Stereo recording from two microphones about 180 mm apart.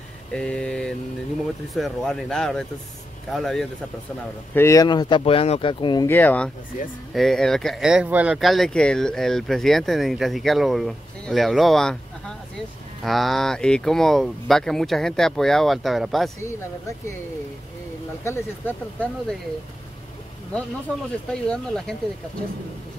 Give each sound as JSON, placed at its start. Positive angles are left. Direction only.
{"t": 0.3, "sound": "speech", "side_deg": 5}
{"t": 4.6, "sound": "speech", "side_deg": 15}
{"t": 6.0, "sound": "speech", "side_deg": 10}
{"t": 18.2, "sound": "speech", "side_deg": 10}
{"t": 21.3, "sound": "speech", "side_deg": 5}